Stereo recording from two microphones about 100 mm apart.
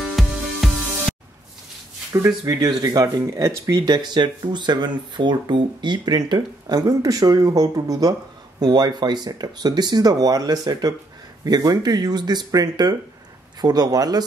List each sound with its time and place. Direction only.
0.0 s music: centre (ahead or behind)
2.1 s speech: 30° right (ahead or behind)